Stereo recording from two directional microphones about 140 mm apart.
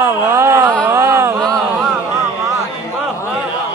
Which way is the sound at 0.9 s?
20° right (ahead or behind).